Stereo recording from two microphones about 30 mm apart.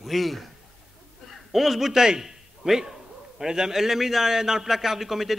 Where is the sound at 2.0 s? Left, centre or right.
Centre.